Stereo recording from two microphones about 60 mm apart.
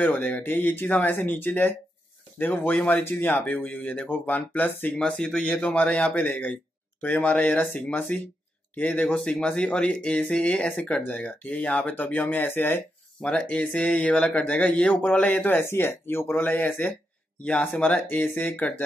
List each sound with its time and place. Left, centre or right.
0.0 s speech: left
4.9 s speech: centre
5.8 s speech: left
13.2 s speech: centre
14.4 s speech: left
15.6 s speech: left
17.4 s speech: left
17.9 s speech: left